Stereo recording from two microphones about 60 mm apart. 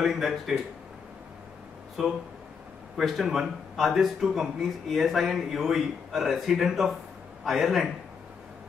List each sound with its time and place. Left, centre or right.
0.0 s speech: centre
2.0 s speech: centre